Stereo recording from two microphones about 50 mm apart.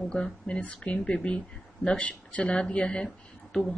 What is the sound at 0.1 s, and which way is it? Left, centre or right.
A woman's voice, centre.